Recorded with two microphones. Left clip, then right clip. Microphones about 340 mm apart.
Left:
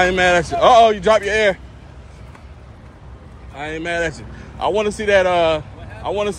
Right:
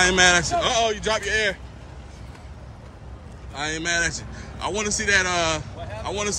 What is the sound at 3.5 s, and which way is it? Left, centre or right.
A man's voice, centre.